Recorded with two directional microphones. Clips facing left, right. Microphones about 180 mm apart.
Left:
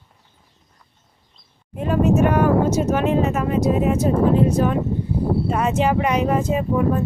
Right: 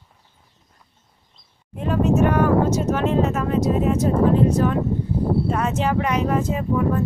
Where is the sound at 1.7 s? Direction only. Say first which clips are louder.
Left 2 dB; 5° left (ahead or behind).